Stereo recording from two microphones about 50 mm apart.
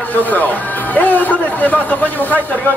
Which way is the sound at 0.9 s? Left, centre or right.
Left.